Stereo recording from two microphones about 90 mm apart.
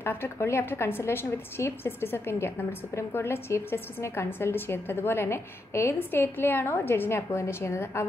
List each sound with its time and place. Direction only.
0.0 s a woman's voice: 25° left (ahead or behind)